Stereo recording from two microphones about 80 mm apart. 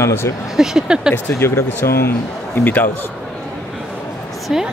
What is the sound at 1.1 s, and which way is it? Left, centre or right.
A man's voice, left.